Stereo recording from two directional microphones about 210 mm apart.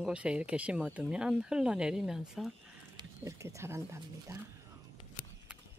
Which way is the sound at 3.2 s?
15° right (ahead or behind).